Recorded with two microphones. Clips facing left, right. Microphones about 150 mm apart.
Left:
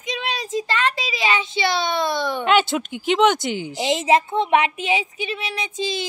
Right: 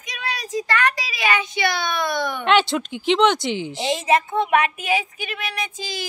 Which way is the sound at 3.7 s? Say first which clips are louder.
Left 3 dB; 20° left (ahead or behind).